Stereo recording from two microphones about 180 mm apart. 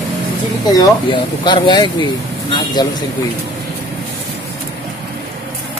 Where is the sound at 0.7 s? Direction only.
25° left (ahead or behind).